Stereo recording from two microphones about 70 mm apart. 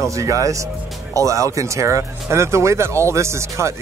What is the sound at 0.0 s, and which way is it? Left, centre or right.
Speech, right.